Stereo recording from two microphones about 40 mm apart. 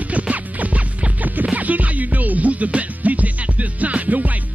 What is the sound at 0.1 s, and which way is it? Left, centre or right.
Music, right.